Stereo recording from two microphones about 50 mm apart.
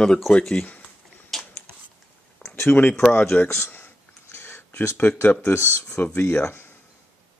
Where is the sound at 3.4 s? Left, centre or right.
Left.